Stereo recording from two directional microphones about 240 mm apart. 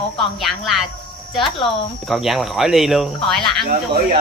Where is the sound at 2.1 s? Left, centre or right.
Centre.